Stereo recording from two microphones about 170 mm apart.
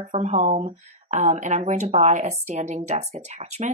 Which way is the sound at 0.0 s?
40° right (ahead or behind).